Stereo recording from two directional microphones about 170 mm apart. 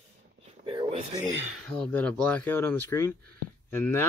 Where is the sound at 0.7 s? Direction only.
35° right (ahead or behind).